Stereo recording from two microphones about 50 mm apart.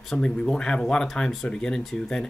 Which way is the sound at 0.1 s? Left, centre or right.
Centre.